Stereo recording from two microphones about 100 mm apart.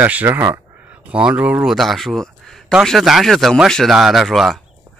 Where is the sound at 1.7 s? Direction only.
Centre (ahead or behind).